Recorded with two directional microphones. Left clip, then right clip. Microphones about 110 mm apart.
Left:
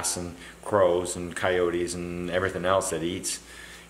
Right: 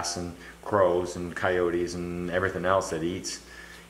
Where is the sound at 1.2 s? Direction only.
15° left (ahead or behind).